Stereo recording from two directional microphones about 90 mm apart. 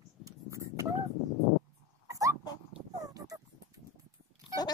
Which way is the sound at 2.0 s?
35° right (ahead or behind).